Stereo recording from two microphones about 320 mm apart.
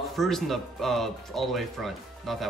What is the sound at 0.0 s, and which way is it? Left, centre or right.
Speech, centre.